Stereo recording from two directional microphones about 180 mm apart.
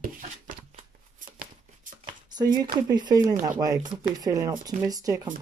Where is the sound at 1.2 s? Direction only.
45° right (ahead or behind).